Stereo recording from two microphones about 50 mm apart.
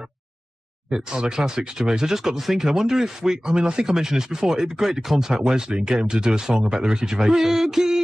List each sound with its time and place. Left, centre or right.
0.8 s speech: centre